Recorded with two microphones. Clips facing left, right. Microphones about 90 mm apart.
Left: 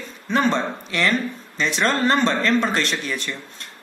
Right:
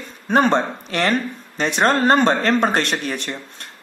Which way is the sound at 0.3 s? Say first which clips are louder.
Right 4 dB; 50° right (ahead or behind).